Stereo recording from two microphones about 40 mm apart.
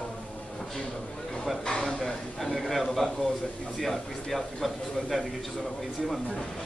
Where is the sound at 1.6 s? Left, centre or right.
Centre.